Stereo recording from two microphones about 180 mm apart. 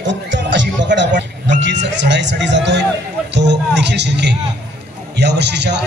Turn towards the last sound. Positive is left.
turn(degrees=-70)  # may be behind; listen again after turning